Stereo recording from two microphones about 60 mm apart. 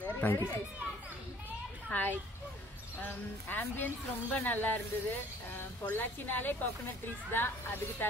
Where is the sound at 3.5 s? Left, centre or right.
Left.